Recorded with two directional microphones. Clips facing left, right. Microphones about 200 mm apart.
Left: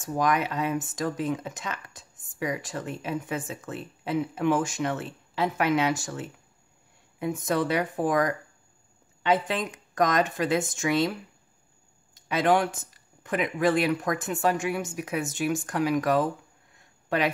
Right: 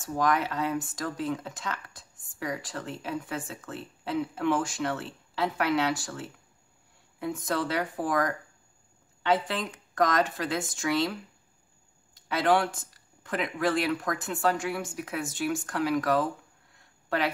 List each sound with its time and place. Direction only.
0.1 s speech: 15° left (ahead or behind)
12.3 s speech: 20° left (ahead or behind)